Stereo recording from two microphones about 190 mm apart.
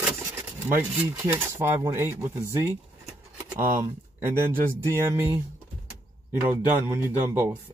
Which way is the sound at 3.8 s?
10° right (ahead or behind).